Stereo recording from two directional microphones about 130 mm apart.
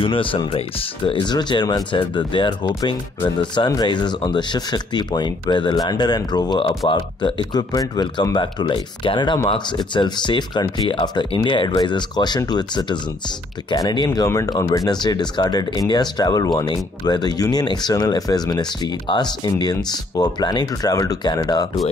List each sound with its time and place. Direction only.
0.0 s speech: 40° left (ahead or behind)